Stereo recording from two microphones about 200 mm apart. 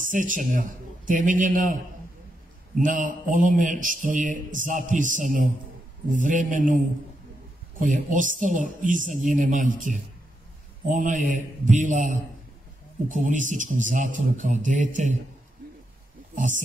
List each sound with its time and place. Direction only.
0.0 s a man's voice: 40° right (ahead or behind)
2.8 s speech: 40° right (ahead or behind)
7.8 s speech: 40° right (ahead or behind)
16.3 s speech: 40° right (ahead or behind)